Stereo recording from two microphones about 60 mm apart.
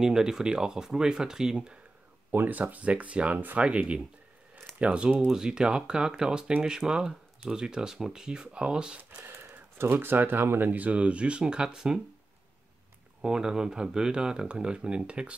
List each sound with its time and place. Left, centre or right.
0.0 s speech: centre
2.3 s speech: right
9.4 s speech: right
10.7 s speech: right
13.2 s speech: centre